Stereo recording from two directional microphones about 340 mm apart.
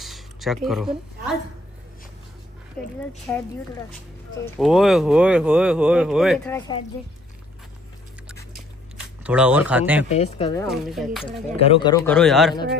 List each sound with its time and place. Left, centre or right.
0.0 s a sound: centre
0.7 s speech: centre
3.3 s speech: centre
9.2 s speech: centre
10.0 s speech: centre
10.7 s speech: centre
11.2 s speech: centre